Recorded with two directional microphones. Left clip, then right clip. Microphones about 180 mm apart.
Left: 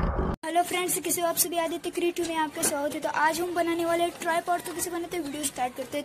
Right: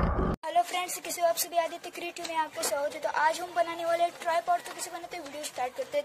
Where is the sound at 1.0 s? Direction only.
5° right (ahead or behind).